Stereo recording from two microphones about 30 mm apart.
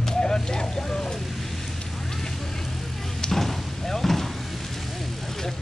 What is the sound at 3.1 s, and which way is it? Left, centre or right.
Door, centre.